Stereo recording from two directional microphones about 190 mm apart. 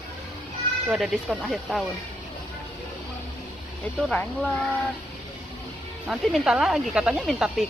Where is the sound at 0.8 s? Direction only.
5° right (ahead or behind).